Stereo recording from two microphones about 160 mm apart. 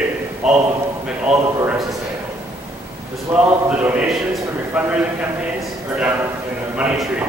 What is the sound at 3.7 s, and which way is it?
Speech, 5° right (ahead or behind).